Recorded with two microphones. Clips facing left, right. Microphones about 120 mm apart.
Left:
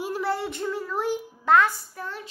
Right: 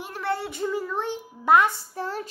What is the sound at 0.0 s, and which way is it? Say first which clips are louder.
A child's voice: left 2 dB; 10° left (ahead or behind).